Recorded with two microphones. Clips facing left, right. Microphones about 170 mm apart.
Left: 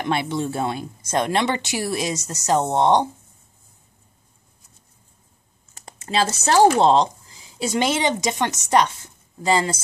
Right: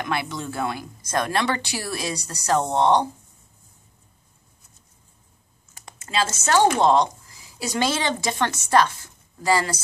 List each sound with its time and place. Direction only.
0.0 s speech: 25° left (ahead or behind)
5.9 s speech: 35° left (ahead or behind)